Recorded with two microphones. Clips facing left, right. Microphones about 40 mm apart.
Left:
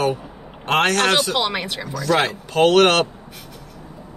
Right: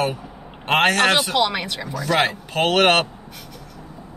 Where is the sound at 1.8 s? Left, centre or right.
Centre.